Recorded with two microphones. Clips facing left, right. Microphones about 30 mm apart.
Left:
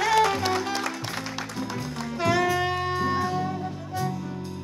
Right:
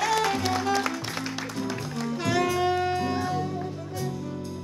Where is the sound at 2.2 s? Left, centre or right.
Centre.